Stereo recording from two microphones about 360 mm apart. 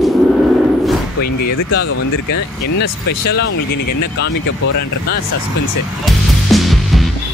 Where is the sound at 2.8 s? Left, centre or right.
Left.